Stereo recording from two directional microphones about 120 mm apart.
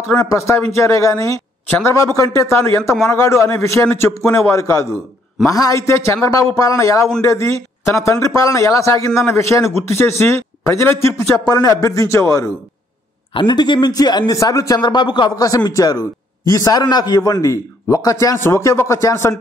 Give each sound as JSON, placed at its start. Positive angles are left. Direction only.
{"t": 0.2, "sound": "a man's voice", "side_deg": 25}
{"t": 13.3, "sound": "a man's voice", "side_deg": 40}